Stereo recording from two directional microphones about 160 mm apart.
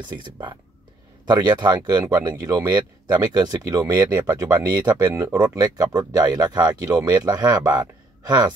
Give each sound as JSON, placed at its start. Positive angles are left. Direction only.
{"t": 0.1, "sound": "speech", "side_deg": -30}